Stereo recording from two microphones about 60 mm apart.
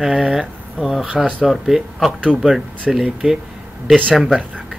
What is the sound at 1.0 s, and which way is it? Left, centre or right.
Speech, right.